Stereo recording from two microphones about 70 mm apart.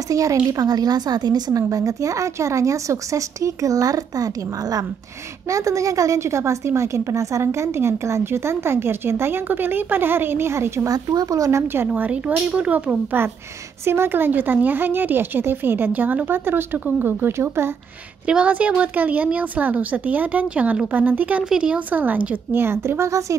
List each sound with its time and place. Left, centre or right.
0.1 s speech: right
0.5 s a woman's voice: right
1.6 s speech: right
5.5 s a woman's voice: right
10.9 s speech: right
11.6 s a woman's voice: right
11.9 s speech: right
18.2 s speech: centre; by 23.3 s right